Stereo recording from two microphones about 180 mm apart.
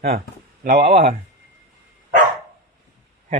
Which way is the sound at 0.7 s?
35° right (ahead or behind).